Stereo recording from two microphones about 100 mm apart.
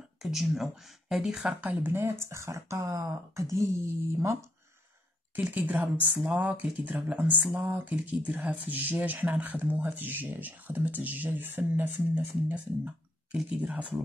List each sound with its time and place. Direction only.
0.2 s speech: 5° right (ahead or behind)
1.6 s speech: 20° right (ahead or behind)
5.3 s speech: 15° right (ahead or behind)